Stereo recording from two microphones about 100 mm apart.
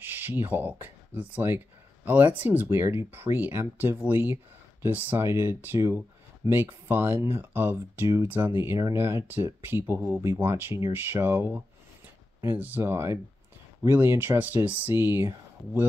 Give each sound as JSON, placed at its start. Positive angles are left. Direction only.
{"t": 0.0, "sound": "speech", "side_deg": -20}